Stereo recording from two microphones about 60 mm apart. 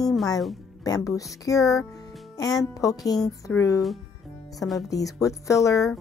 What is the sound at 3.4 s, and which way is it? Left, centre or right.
Speech, left.